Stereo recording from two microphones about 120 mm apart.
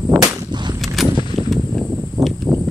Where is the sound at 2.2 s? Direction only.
35° right (ahead or behind).